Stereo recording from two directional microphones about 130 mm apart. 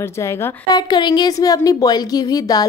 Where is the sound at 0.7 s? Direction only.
30° left (ahead or behind).